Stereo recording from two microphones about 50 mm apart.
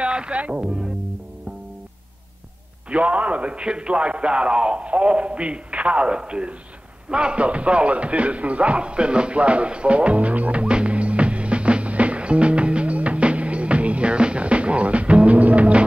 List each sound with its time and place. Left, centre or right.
0.0 s music: right
2.9 s a man's voice: right
7.1 s music: centre